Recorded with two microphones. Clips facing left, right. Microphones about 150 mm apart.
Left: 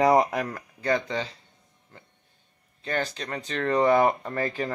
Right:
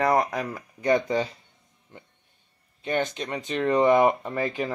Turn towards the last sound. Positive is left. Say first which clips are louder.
# right 1 dB
turn(degrees=-10)  # may be behind; listen again after turning